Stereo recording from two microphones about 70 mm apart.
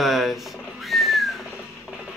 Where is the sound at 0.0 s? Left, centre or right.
Centre.